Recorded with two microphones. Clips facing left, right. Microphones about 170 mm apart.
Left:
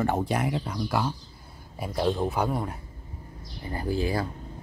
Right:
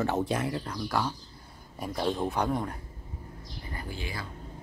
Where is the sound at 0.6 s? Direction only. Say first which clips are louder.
Left 3 dB; 10° left (ahead or behind).